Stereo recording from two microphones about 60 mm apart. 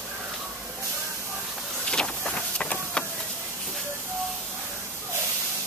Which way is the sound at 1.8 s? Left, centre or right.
Centre.